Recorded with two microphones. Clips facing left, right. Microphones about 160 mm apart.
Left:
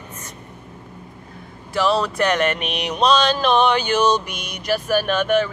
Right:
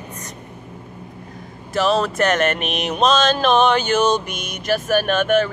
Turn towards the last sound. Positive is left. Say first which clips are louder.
# right 1 dB
turn(degrees=-50)  # may be behind; listen again after turning